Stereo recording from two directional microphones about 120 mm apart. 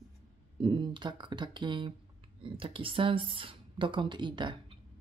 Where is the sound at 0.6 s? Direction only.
40° right (ahead or behind).